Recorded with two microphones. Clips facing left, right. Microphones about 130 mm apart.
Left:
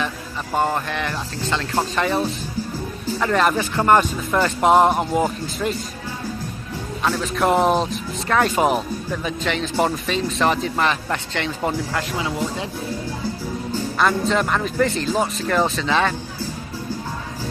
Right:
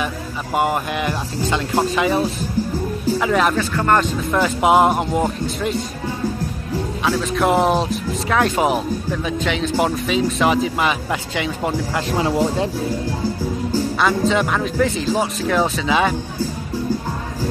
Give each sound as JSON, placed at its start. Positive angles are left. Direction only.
{"t": 0.6, "sound": "speech", "side_deg": -15}
{"t": 3.5, "sound": "speech", "side_deg": 15}
{"t": 4.3, "sound": "speech", "side_deg": -5}
{"t": 7.1, "sound": "speech", "side_deg": 0}
{"t": 12.2, "sound": "speech", "side_deg": -40}
{"t": 13.9, "sound": "speech", "side_deg": 0}